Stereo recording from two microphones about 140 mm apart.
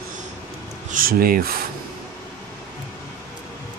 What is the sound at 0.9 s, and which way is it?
Speech, 85° right.